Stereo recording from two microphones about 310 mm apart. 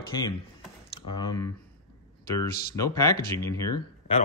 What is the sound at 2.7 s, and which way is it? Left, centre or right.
Speech, centre.